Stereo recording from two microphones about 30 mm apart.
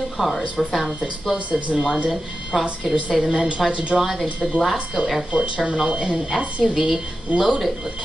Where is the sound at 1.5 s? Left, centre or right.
Right.